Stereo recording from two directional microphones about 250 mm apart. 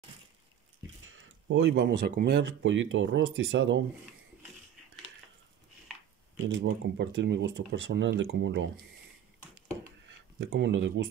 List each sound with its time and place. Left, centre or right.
1.0 s speech: right
6.4 s speech: right
10.0 s a sound: right